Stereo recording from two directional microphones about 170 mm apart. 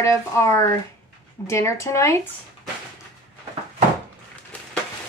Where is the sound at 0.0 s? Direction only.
15° left (ahead or behind).